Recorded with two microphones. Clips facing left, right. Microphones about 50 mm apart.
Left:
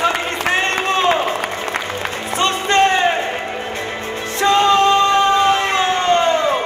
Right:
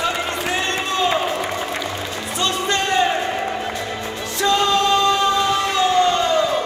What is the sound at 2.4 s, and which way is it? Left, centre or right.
Music, left.